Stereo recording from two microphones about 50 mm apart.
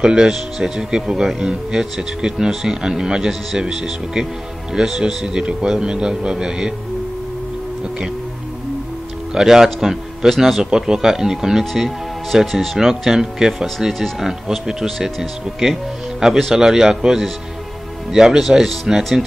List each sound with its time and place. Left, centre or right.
0.0 s speech: centre
9.3 s a man's voice: centre